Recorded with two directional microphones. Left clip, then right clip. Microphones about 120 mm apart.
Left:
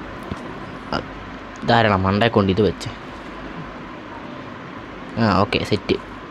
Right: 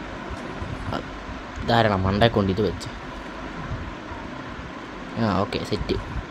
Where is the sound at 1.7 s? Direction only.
15° left (ahead or behind).